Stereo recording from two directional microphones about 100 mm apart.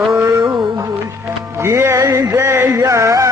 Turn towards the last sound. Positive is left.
turn(degrees=-35)  # may be behind; listen again after turning